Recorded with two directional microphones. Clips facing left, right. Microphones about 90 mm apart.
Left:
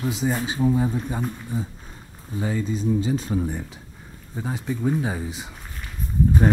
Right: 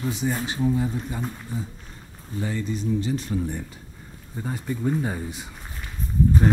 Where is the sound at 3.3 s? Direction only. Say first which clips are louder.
Left 1 dB; 35° left (ahead or behind).